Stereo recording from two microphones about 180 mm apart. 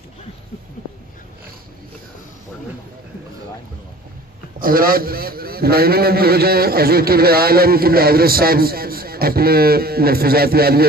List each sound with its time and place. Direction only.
4.6 s a man's voice: 55° right (ahead or behind)